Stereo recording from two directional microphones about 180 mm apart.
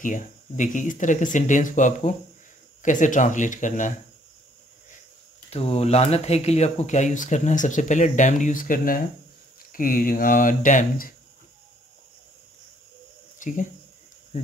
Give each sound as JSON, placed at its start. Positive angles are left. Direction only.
{"t": 0.0, "sound": "speech", "side_deg": 45}
{"t": 5.5, "sound": "speech", "side_deg": 35}
{"t": 13.4, "sound": "speech", "side_deg": 45}